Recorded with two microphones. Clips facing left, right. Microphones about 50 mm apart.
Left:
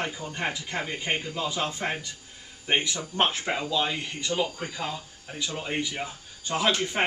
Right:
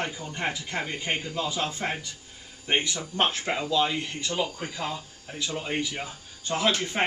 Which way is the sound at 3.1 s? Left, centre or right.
Centre.